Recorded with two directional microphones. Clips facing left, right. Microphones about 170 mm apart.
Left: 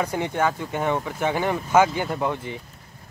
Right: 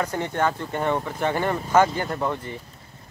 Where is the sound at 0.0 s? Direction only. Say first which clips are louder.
Left 1 dB; 10° left (ahead or behind).